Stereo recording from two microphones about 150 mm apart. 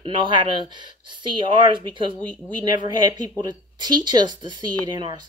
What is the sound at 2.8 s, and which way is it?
Speech, 25° right (ahead or behind).